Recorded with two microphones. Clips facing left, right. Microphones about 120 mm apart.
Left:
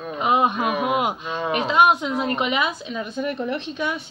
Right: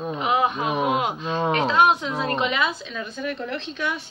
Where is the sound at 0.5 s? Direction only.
25° right (ahead or behind).